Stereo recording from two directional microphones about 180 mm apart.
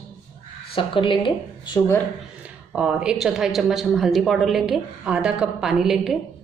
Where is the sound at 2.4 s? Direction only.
5° right (ahead or behind).